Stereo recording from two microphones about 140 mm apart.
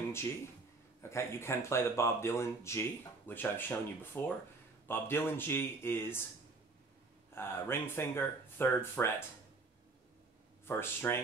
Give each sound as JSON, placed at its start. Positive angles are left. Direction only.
{"t": 1.1, "sound": "speech", "side_deg": 20}
{"t": 7.3, "sound": "speech", "side_deg": 15}
{"t": 10.7, "sound": "speech", "side_deg": 15}